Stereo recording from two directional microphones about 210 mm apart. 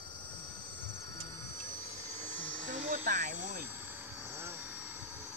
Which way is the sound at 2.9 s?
40° right (ahead or behind).